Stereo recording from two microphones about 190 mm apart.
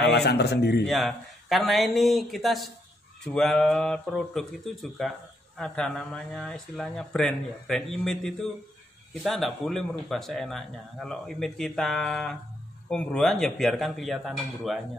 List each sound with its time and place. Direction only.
0.0 s a man's voice: 60° left (ahead or behind)
0.8 s speech: centre (ahead or behind)